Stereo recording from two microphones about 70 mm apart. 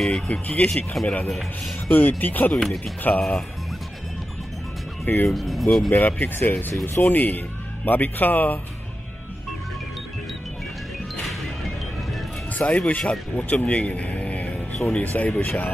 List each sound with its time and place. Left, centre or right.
0.3 s speech: centre
1.0 s speech: centre
1.9 s a man's voice: left
2.5 s speech: centre
5.0 s speech: left
5.3 s speech: centre
5.9 s a man's voice: left
11.2 s music: centre
12.5 s a man's voice: left